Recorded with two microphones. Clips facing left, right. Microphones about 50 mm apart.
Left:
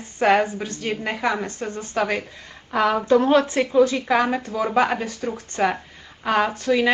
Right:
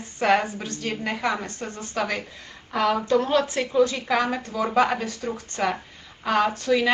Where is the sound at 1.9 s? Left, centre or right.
Centre.